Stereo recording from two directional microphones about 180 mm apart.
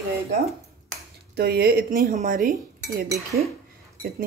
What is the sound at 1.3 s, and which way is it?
Cutlery, 60° right (ahead or behind).